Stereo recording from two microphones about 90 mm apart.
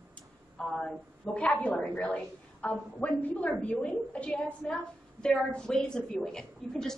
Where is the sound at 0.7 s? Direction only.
5° left (ahead or behind).